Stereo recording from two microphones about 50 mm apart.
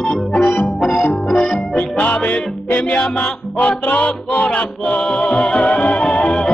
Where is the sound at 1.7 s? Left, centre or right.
Left.